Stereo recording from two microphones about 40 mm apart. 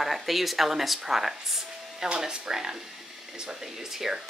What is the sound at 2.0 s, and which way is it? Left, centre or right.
Speech, right.